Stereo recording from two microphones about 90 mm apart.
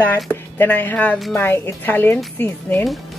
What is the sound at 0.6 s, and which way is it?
A woman's voice, 20° left (ahead or behind).